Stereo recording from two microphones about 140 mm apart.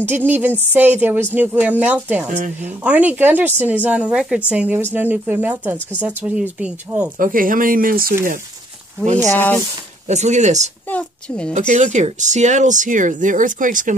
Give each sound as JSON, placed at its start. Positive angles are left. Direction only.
{"t": 0.0, "sound": "speech", "side_deg": -15}
{"t": 7.2, "sound": "speech", "side_deg": -75}
{"t": 9.3, "sound": "speech", "side_deg": 15}
{"t": 10.0, "sound": "speech", "side_deg": -55}
{"t": 10.9, "sound": "a woman's voice", "side_deg": 10}
{"t": 11.5, "sound": "speech", "side_deg": -60}